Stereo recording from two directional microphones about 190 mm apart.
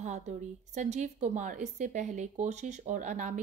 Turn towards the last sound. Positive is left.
turn(degrees=-40)  # may be behind; listen again after turning